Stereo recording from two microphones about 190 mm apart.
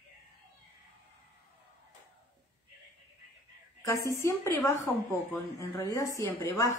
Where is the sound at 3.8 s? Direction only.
15° left (ahead or behind).